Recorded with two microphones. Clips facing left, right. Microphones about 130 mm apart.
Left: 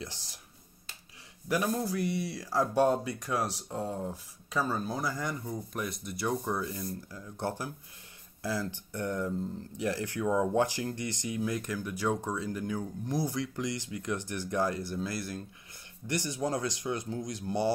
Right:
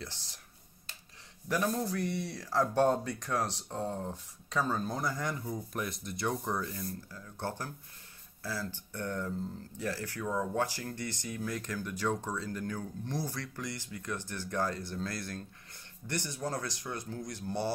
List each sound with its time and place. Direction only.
1.5 s speech: 5° left (ahead or behind)